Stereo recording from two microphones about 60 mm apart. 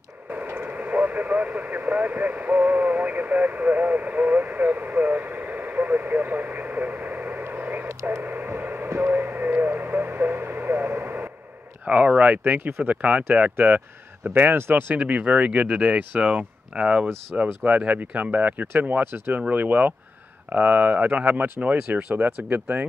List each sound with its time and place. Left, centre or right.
0.5 s speech: right
8.2 s radio: right
11.8 s speech: right
15.0 s speech: right
17.4 s speech: right